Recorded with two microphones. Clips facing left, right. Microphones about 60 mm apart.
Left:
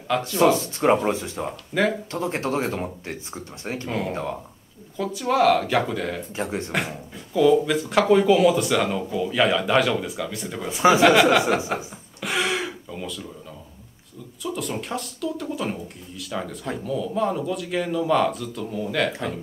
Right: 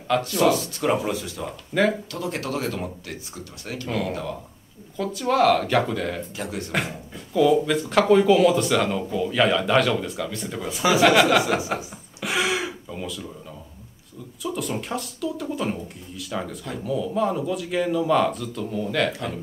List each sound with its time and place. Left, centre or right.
0.4 s speech: left
1.7 s speech: centre
2.0 s speech: left
4.9 s speech: centre
6.3 s speech: left
6.7 s speech: centre
11.7 s a sound: centre
14.4 s speech: centre